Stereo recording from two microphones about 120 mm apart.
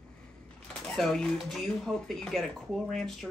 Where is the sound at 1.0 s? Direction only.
Centre (ahead or behind).